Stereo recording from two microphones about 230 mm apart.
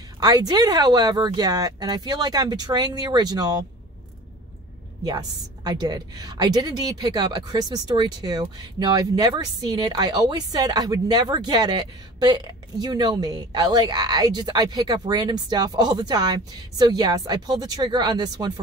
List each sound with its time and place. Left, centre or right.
0.2 s a woman's voice: centre
5.0 s a woman's voice: centre